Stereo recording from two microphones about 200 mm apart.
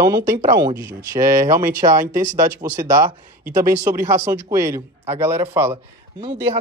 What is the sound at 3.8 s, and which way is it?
Speech, 15° right (ahead or behind).